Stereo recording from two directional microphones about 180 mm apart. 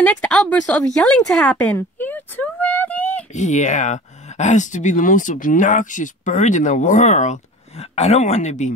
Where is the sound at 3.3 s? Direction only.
40° left (ahead or behind).